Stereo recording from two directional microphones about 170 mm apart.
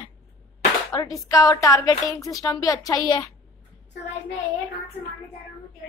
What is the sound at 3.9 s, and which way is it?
Speech, 90° left.